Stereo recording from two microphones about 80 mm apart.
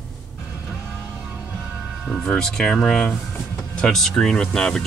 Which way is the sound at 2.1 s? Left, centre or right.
Centre.